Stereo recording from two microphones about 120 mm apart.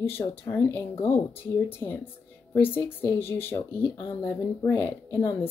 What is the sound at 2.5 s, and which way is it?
Speech, 15° left (ahead or behind).